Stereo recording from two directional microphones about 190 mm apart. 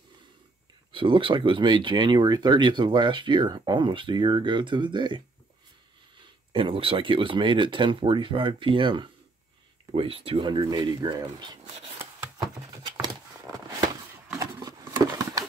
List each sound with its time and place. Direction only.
0.9 s speech: 25° right (ahead or behind)
6.5 s speech: 30° right (ahead or behind)
14.4 s a sound: 20° right (ahead or behind)